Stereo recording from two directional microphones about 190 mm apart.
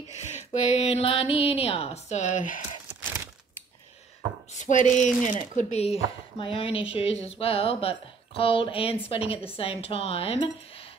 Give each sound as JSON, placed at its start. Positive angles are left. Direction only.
{"t": 0.3, "sound": "speech", "side_deg": 35}
{"t": 2.9, "sound": "a sound", "side_deg": -10}
{"t": 4.6, "sound": "speech", "side_deg": 40}